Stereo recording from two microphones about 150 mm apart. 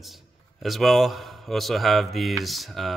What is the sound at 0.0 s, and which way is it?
A man's voice, centre (ahead or behind).